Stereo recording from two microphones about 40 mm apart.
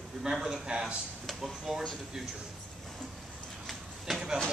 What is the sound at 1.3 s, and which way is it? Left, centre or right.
Speech, centre.